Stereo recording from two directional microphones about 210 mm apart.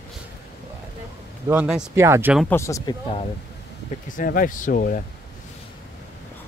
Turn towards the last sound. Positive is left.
turn(degrees=40)  # may be behind; listen again after turning